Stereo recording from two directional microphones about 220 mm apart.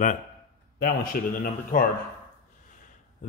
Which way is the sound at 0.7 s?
40° left (ahead or behind).